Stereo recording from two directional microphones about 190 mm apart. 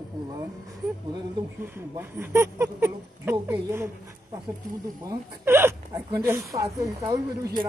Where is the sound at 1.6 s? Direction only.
10° right (ahead or behind).